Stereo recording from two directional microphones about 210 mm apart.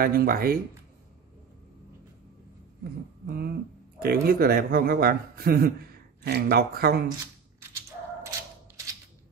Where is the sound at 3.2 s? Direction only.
50° right (ahead or behind).